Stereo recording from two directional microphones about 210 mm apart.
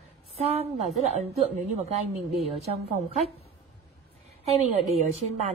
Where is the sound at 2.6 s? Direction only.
30° right (ahead or behind).